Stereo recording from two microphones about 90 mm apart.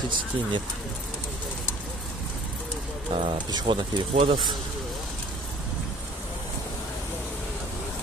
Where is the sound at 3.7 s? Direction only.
60° right (ahead or behind).